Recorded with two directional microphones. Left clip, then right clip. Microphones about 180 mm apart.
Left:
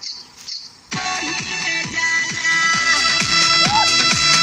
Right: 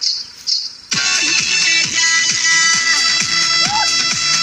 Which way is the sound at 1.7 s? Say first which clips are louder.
Right 5 dB; 20° left (ahead or behind).